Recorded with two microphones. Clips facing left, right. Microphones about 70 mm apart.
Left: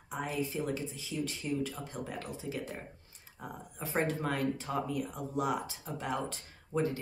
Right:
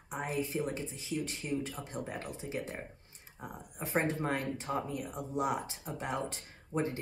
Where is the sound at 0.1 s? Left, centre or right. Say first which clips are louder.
Even; right.